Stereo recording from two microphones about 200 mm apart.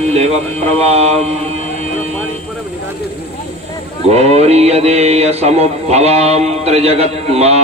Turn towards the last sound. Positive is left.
turn(degrees=-30)  # may be behind; listen again after turning